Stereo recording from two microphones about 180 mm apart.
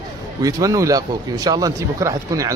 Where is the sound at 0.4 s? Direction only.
20° right (ahead or behind).